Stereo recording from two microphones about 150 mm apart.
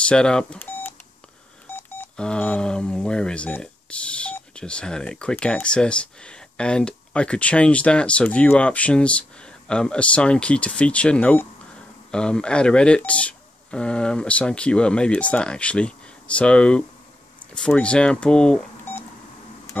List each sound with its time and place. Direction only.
0.0 s speech: 5° left (ahead or behind)
18.9 s beep: 15° left (ahead or behind)